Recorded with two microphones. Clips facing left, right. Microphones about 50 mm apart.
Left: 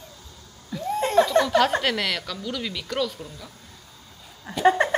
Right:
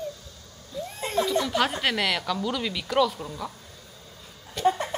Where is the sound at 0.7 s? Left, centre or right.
Left.